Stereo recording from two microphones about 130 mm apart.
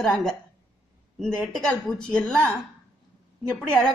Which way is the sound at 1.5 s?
5° left (ahead or behind).